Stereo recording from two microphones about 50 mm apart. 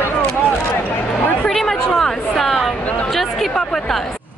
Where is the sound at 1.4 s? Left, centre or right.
Centre.